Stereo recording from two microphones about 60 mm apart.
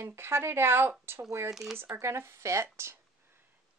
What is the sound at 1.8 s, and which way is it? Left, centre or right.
Speech, right.